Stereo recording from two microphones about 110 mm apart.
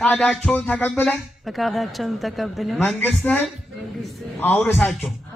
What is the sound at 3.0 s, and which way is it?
A man's voice, 15° left (ahead or behind).